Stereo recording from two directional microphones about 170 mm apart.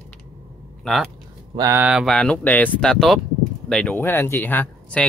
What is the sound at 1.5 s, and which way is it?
Speech, 20° right (ahead or behind).